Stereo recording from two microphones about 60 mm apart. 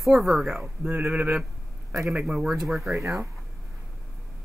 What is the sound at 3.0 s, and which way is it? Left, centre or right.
Speech, right.